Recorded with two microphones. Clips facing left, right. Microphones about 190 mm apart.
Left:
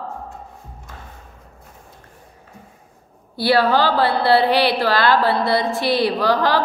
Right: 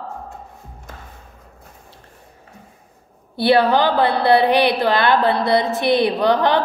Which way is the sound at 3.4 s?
20° right (ahead or behind).